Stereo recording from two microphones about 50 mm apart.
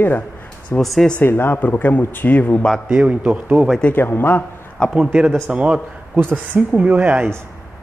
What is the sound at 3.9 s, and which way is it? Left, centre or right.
Speech, left.